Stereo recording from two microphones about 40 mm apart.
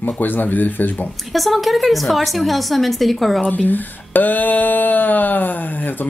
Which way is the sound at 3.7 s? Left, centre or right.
Left.